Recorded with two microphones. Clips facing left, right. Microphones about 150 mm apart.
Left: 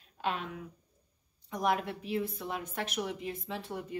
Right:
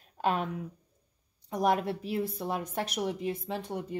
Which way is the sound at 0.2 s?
45° right (ahead or behind).